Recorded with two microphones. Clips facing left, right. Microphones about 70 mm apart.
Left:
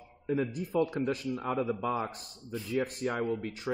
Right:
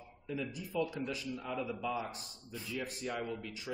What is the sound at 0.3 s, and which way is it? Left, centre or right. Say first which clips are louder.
Speech: left 9 dB; left.